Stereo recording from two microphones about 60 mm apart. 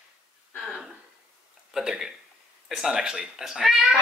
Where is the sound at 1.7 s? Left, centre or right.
Centre.